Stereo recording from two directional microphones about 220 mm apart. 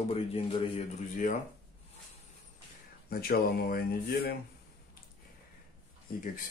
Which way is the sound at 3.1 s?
45° left (ahead or behind).